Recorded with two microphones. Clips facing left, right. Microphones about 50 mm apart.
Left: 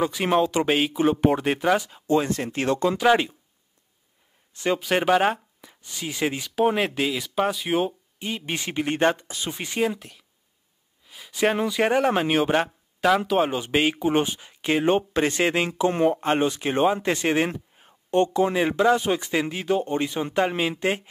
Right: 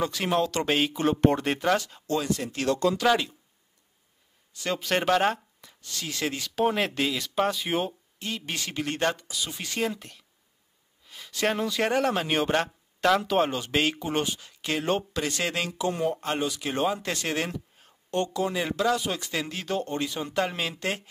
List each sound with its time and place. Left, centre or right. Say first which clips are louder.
0.0 s speech: left 4 dB; centre
2.2 s speech: left 2 dB; left
4.6 s speech: left 4 dB; centre
8.2 s speech: left 3 dB; centre
9.8 s speech: left 4 dB; centre; by 21.1 s left